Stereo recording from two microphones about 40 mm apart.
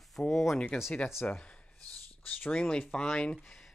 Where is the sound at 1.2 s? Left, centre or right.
Left.